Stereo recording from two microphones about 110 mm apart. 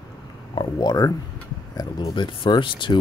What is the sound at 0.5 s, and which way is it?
Speech, 40° left (ahead or behind).